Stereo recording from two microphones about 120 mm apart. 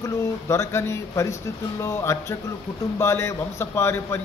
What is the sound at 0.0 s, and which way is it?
A man's voice, 25° left (ahead or behind).